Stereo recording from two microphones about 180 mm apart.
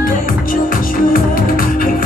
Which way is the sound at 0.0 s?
50° left (ahead or behind).